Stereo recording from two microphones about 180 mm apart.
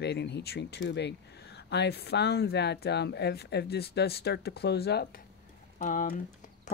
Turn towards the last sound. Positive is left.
turn(degrees=45)  # may be behind; listen again after turning